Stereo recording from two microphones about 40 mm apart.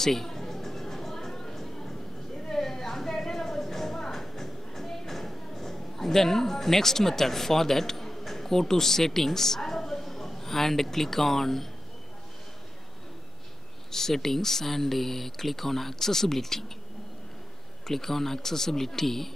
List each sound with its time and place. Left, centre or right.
0.0 s music: centre
1.3 s a sound: centre
4.1 s music: centre
8.3 s a woman's voice: centre
13.9 s speech: centre
17.8 s speech: centre